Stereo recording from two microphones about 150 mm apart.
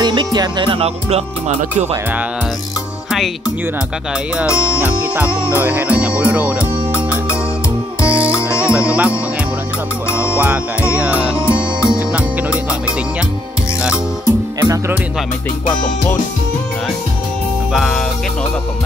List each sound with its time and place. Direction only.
0.0 s music: 30° right (ahead or behind); by 1.9 s 45° right (ahead or behind)
3.1 s music: 5° right (ahead or behind)
4.7 s music: 10° right (ahead or behind)
10.1 s music: 10° right (ahead or behind)
11.3 s music: 15° left (ahead or behind)
11.9 s music: 10° right (ahead or behind)
14.6 s speech: 20° right (ahead or behind)
17.7 s music: centre (ahead or behind)